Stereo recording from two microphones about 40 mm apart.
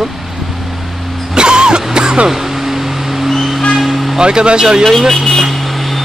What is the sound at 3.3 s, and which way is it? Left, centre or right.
Vehicle, centre.